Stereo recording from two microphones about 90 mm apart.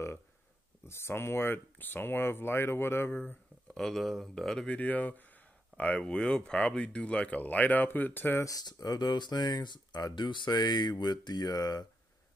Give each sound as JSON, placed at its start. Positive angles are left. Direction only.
{"t": 0.8, "sound": "speech", "side_deg": 30}
{"t": 3.7, "sound": "speech", "side_deg": 5}
{"t": 4.6, "sound": "speech", "side_deg": 15}
{"t": 8.5, "sound": "speech", "side_deg": 40}